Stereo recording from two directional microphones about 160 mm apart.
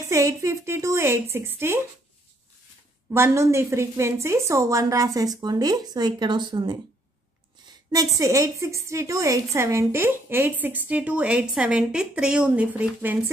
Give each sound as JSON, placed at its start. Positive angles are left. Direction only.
{"t": 0.1, "sound": "a woman's voice", "side_deg": -20}
{"t": 3.1, "sound": "a woman's voice", "side_deg": -15}
{"t": 7.9, "sound": "a woman's voice", "side_deg": -20}